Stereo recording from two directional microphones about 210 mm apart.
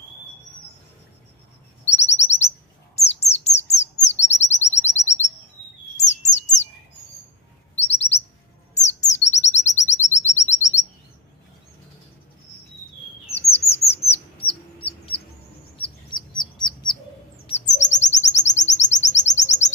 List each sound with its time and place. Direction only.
1.9 s chirp: 30° left (ahead or behind)
5.9 s bird: 35° left (ahead or behind)
8.7 s chirp: 35° left (ahead or behind)
13.3 s bird: 30° left (ahead or behind)
16.3 s bird: 20° left (ahead or behind)
17.5 s chirp: 35° left (ahead or behind)